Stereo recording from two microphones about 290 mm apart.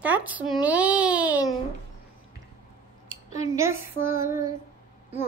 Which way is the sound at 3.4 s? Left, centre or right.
Centre.